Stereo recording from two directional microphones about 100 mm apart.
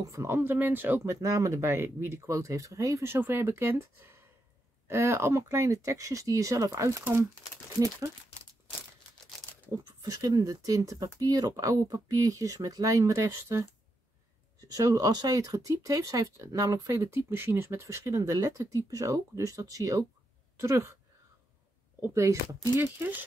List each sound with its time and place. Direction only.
0.1 s speech: 30° right (ahead or behind)
10.0 s speech: 40° right (ahead or behind)
14.7 s speech: 35° right (ahead or behind)
22.1 s speech: 30° right (ahead or behind)
22.8 s speech: 20° right (ahead or behind)